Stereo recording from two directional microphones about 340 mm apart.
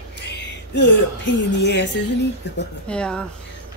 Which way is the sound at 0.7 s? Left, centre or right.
Left.